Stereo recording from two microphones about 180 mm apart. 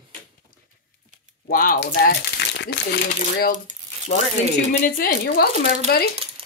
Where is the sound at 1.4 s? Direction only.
55° left (ahead or behind).